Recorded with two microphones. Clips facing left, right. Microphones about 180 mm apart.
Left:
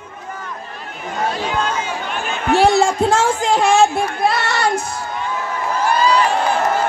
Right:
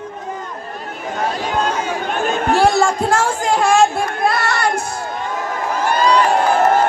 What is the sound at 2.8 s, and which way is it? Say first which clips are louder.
Speech: left 1 dB; 20° left (ahead or behind).